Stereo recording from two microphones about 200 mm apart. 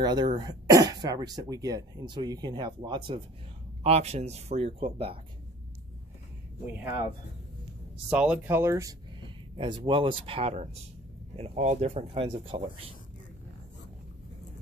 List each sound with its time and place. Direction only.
0.0 s speech: 20° right (ahead or behind)
8.1 s speech: 5° right (ahead or behind); by 12.8 s 25° right (ahead or behind)